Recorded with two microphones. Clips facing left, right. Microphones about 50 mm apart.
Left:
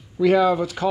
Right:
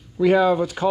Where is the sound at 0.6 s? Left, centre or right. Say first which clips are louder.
Right 1 dB; right.